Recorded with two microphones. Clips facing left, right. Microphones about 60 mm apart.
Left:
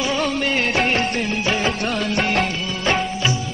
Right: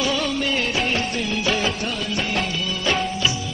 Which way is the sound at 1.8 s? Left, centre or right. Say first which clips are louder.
Left 4 dB; left.